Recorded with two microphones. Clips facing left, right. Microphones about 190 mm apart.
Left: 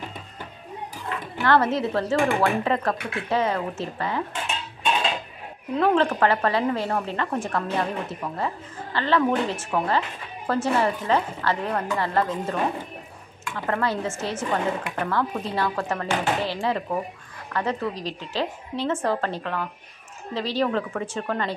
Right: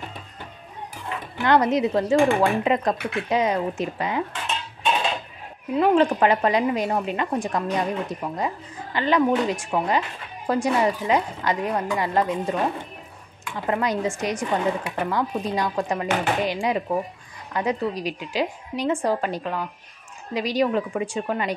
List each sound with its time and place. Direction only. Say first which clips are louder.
1.0 s a woman's voice: right 1 dB; 15° right (ahead or behind)
5.8 s a woman's voice: right 2 dB; 15° right (ahead or behind)
13.7 s a woman's voice: right 2 dB; 15° right (ahead or behind)